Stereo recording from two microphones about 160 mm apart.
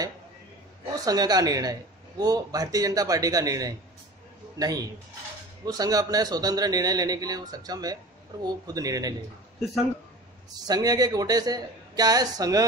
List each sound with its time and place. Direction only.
0.9 s a man's voice: 25° right (ahead or behind)
10.5 s a man's voice: 25° right (ahead or behind)